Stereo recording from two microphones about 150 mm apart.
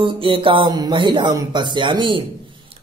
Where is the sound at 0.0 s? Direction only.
35° right (ahead or behind).